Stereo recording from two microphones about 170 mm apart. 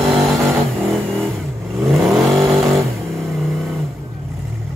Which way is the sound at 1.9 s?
Centre (ahead or behind).